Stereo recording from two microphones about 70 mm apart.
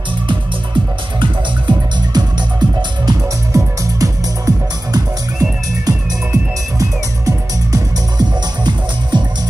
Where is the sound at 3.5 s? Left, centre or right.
Right.